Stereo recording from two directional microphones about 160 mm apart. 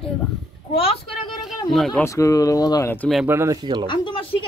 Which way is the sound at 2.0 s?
20° left (ahead or behind).